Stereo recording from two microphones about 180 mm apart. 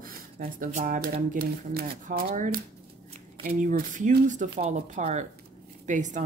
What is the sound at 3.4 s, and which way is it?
Speech, 45° right (ahead or behind).